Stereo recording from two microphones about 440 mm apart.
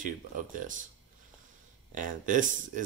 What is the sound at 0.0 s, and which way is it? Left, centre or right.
Speech, centre.